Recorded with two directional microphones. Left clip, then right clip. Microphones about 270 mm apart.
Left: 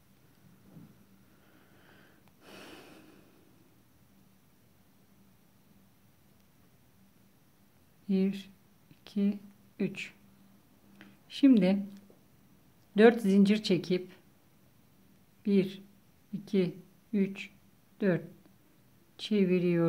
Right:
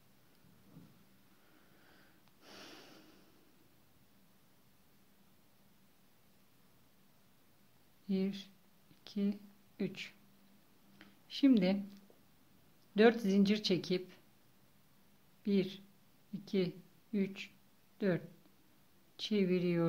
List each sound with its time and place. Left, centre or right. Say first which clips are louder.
1.9 s sniff: left 5 dB; centre
8.1 s speech: left 6 dB; centre
9.0 s a sound: left 6 dB; centre
12.9 s speech: left 6 dB; centre
15.4 s speech: left 6 dB; centre